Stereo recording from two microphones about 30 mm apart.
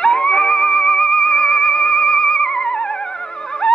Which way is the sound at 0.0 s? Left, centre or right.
Left.